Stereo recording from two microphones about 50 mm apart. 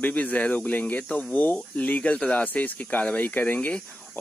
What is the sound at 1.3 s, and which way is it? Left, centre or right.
Speech, left.